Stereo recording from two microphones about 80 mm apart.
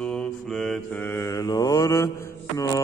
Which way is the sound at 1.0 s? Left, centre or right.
Left.